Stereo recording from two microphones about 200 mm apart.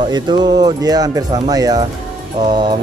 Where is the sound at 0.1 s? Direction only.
20° right (ahead or behind).